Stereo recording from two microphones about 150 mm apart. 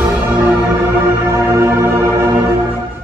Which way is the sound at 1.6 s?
15° right (ahead or behind).